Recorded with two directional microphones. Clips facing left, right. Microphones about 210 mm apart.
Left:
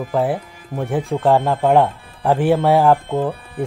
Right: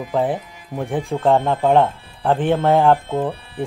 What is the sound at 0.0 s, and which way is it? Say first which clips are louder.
Speech: left 1 dB; 5° left (ahead or behind).